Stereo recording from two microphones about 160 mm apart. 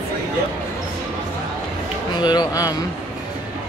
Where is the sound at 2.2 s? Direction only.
25° left (ahead or behind).